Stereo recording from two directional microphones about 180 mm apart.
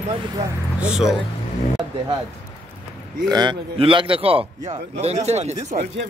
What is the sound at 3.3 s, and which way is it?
A man's voice, 25° right (ahead or behind).